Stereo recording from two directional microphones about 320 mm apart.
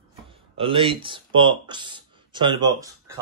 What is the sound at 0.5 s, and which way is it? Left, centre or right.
Speech, centre.